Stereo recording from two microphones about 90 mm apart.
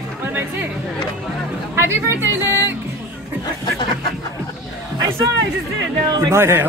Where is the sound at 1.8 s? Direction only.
30° right (ahead or behind).